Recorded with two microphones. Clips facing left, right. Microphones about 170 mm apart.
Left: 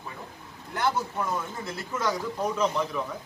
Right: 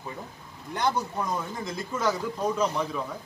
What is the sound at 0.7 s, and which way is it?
Speech, 15° right (ahead or behind).